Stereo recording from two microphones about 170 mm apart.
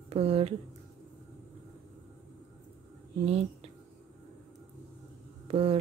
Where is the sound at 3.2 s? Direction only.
35° right (ahead or behind).